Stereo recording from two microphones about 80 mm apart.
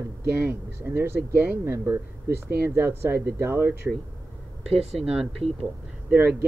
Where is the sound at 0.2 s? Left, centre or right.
Right.